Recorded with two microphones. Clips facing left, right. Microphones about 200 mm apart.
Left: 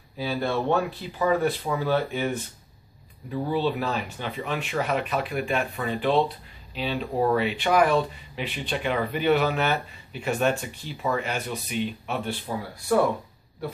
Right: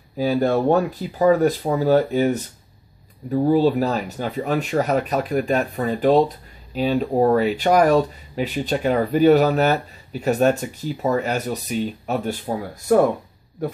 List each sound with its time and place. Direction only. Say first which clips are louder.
0.2 s speech: right 8 dB; 45° right (ahead or behind)